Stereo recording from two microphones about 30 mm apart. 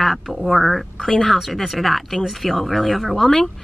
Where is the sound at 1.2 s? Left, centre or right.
Centre.